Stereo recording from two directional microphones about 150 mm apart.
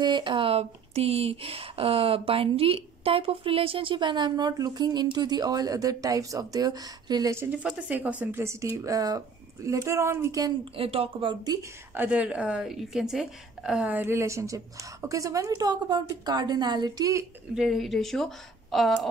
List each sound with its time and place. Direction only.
0.0 s speech: 30° right (ahead or behind)
10.8 s speech: 40° right (ahead or behind)
11.9 s speech: 10° right (ahead or behind)
17.6 s a woman's voice: centre (ahead or behind)